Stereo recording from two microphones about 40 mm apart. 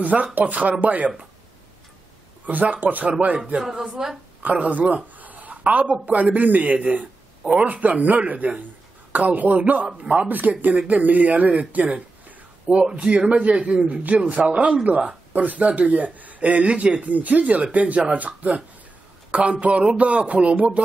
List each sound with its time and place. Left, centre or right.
0.0 s a man's voice: right
2.4 s a man's voice: right
3.9 s a woman's voice: centre
4.4 s a woman's voice: right
9.8 s a man's voice: right
10.2 s a man's voice: right